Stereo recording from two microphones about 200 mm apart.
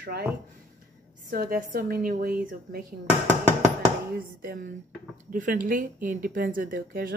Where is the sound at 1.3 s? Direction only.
45° right (ahead or behind).